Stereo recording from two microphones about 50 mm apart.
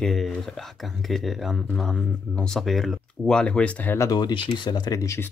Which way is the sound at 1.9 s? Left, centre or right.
Left.